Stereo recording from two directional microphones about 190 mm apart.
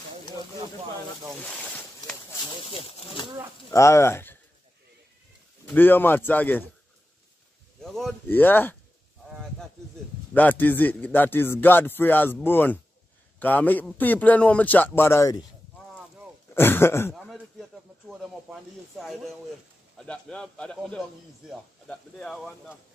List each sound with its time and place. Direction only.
1.2 s boat: centre (ahead or behind)
2.8 s speech: 30° left (ahead or behind)
3.7 s a man's voice: 15° left (ahead or behind)
5.7 s a man's voice: 10° left (ahead or behind)
7.8 s a man's voice: centre (ahead or behind)
10.3 s a man's voice: 10° left (ahead or behind)
16.5 s a man's voice: 10° left (ahead or behind)
17.1 s a sound: centre (ahead or behind)
20.0 s speech: 5° left (ahead or behind)